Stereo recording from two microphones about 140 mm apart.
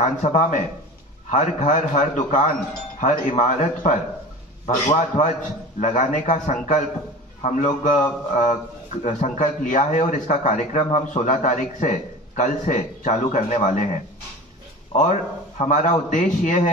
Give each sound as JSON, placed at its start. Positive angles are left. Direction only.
{"t": 0.0, "sound": "speech", "side_deg": 60}
{"t": 15.0, "sound": "speech", "side_deg": 55}